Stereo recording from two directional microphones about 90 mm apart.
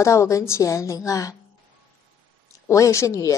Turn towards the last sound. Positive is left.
turn(degrees=35)  # may be behind; listen again after turning